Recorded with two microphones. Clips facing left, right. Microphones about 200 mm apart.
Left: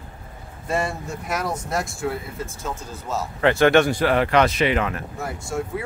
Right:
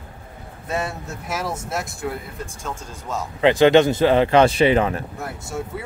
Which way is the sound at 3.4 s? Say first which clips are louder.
Right 3 dB; 20° right (ahead or behind).